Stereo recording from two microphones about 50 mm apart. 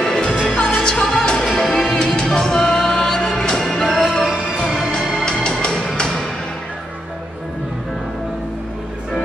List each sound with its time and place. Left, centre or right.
0.0 s music: centre